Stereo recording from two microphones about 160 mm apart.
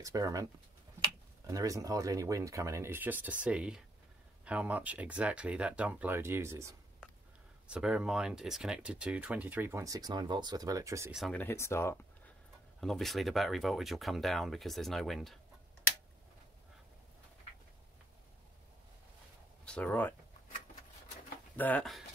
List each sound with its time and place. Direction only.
0.0 s speech: 20° right (ahead or behind)
1.5 s speech: 20° right (ahead or behind)
7.6 s speech: 5° right (ahead or behind)
11.1 s speech: centre (ahead or behind)
11.3 s speech: 15° left (ahead or behind)
12.8 s speech: centre (ahead or behind)
19.6 s speech: 5° left (ahead or behind)
21.5 s speech: 10° left (ahead or behind)